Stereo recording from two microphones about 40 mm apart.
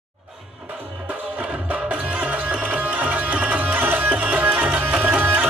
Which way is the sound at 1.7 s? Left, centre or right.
Right.